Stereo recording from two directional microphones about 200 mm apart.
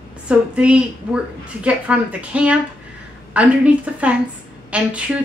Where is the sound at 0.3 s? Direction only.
5° right (ahead or behind).